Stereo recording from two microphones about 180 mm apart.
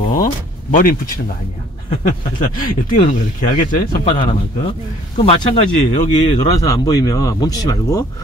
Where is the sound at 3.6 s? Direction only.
45° left (ahead or behind).